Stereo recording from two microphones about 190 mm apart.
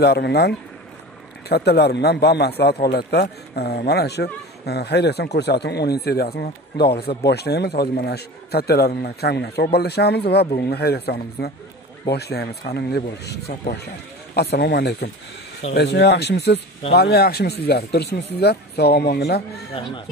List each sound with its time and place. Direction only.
0.0 s speech: 60° left (ahead or behind)